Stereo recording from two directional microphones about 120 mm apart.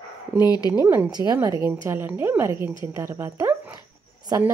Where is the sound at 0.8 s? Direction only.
20° right (ahead or behind).